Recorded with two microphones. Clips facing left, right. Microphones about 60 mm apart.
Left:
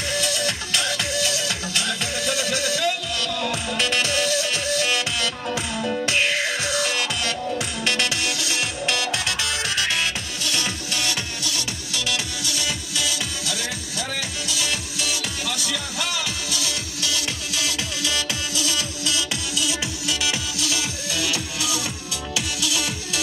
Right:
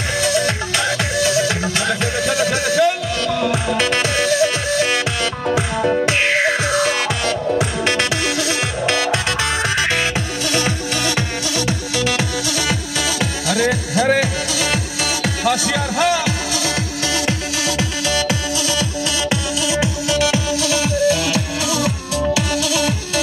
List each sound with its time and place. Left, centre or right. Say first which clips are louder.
0.2 s music: right 7 dB; right
5.8 s music: right 4 dB; right
14.5 s music: right 7 dB; right
16.0 s music: right 13 dB; right
17.3 s music: right 7 dB; right
19.6 s music: right 8 dB; right